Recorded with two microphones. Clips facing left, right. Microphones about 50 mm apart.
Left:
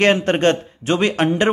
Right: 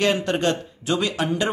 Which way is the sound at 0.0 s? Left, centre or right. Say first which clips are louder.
Left 6 dB; left.